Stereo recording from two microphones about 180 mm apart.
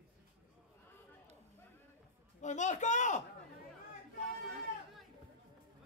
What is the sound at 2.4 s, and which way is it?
Speech, 40° left (ahead or behind).